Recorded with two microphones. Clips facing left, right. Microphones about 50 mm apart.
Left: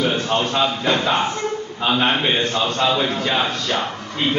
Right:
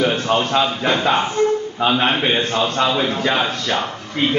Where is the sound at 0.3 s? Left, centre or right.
Right.